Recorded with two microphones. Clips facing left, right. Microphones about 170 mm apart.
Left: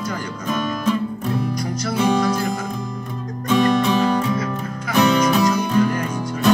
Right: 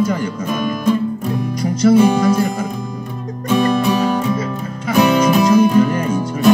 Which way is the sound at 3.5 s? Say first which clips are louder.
Right 2 dB; 10° right (ahead or behind).